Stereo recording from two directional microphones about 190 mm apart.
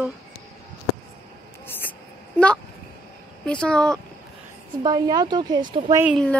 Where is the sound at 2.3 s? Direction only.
5° left (ahead or behind).